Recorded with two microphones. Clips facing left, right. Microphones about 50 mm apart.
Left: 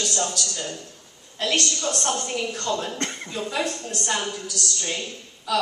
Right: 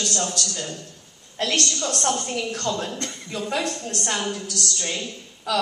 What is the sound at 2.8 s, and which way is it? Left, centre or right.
Speech, left.